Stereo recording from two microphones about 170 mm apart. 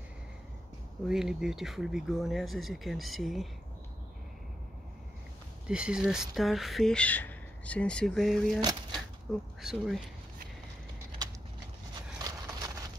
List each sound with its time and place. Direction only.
1.0 s speech: 5° right (ahead or behind)
5.7 s speech: 5° right (ahead or behind)
8.9 s a sound: centre (ahead or behind)
12.2 s clip-clop: 20° right (ahead or behind)